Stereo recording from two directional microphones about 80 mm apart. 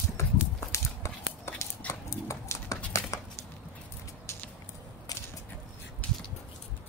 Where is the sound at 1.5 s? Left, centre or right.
Left.